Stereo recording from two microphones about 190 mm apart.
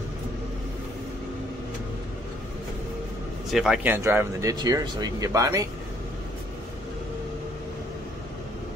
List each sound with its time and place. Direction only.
3.4 s speech: centre (ahead or behind); by 5.7 s 15° right (ahead or behind)